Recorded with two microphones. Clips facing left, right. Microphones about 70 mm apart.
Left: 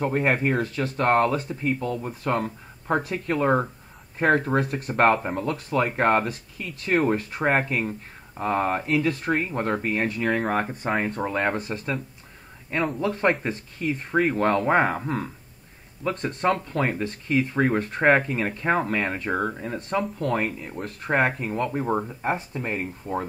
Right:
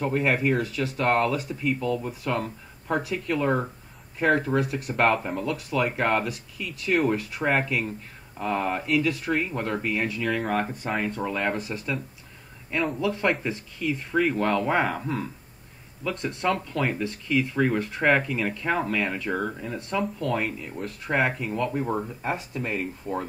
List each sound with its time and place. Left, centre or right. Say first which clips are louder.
0.0 s speech: left 1 dB; left